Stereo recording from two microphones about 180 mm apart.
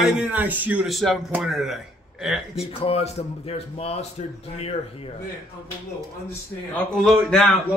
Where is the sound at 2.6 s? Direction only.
35° left (ahead or behind).